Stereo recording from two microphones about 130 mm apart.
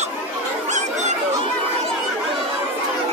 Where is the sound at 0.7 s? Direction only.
65° right (ahead or behind).